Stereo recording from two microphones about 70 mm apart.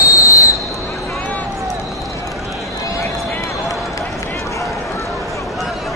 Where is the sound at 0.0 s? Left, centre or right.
Left.